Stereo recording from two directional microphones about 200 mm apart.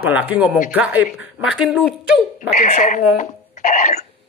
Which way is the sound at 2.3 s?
40° left (ahead or behind).